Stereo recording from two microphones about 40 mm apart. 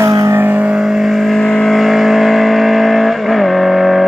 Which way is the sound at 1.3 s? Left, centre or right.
Centre.